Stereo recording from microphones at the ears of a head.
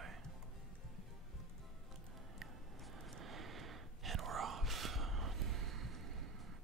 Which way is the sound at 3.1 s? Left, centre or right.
Right.